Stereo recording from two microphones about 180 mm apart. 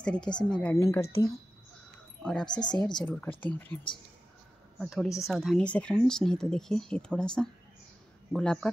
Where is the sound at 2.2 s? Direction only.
5° left (ahead or behind).